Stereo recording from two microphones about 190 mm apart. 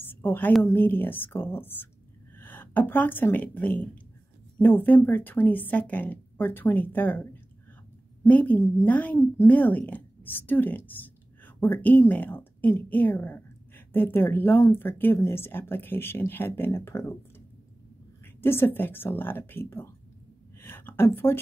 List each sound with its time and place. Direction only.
0.0 s a sound: 10° left (ahead or behind)
0.5 s a woman's voice: 10° left (ahead or behind)
18.2 s a woman's voice: 10° left (ahead or behind)